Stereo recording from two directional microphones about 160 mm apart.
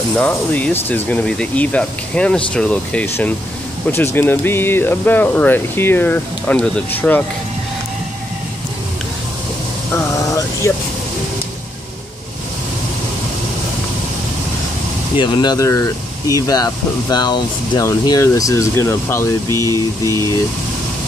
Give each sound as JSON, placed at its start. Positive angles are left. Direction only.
{"t": 0.2, "sound": "speech", "side_deg": 10}
{"t": 9.9, "sound": "vehicle", "side_deg": 20}
{"t": 15.1, "sound": "speech", "side_deg": 30}
{"t": 19.5, "sound": "speech", "side_deg": -20}